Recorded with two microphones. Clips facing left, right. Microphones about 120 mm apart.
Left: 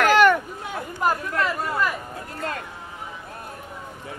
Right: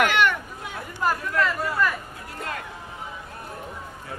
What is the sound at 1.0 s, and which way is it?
Chatter, 20° left (ahead or behind).